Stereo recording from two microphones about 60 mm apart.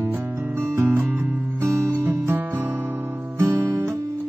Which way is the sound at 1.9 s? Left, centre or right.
Right.